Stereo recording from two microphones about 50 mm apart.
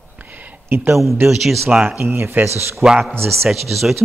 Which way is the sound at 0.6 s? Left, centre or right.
Right.